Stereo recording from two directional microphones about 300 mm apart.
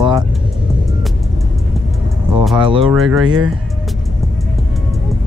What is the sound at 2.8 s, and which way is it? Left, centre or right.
Speech, centre.